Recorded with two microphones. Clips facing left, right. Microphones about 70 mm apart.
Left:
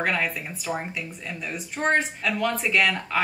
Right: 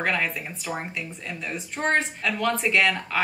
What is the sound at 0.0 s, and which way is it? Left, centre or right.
Speech, centre.